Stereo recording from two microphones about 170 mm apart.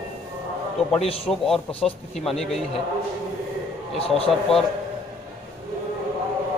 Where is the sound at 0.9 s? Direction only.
35° left (ahead or behind).